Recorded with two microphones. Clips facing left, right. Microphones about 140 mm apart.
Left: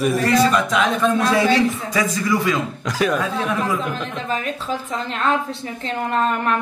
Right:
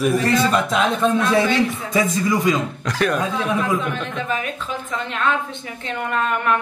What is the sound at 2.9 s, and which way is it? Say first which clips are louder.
Speech: left 1 dB; centre (ahead or behind).